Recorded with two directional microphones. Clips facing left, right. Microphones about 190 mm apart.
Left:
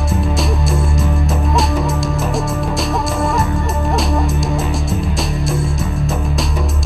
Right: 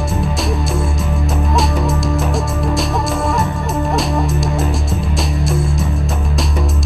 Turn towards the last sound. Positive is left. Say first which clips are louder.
# even
turn(degrees=0)  # may be behind; listen again after turning